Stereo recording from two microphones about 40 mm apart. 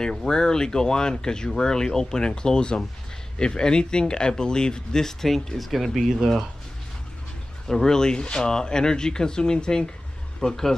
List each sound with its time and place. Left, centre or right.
0.3 s speech: centre
7.6 s speech: centre